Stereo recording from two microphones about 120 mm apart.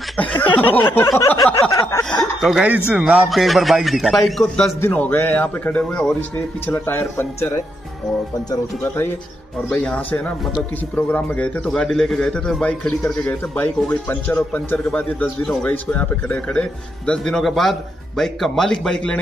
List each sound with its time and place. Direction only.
0.6 s speech: 15° left (ahead or behind)
1.0 s a sound: 25° left (ahead or behind)
2.0 s speech: centre (ahead or behind)
4.8 s speech: 15° left (ahead or behind)
6.7 s speech: 20° left (ahead or behind)
8.8 s speech: 20° left (ahead or behind)